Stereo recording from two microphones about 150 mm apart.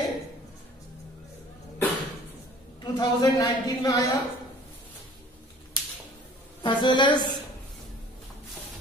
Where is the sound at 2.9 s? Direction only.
25° left (ahead or behind).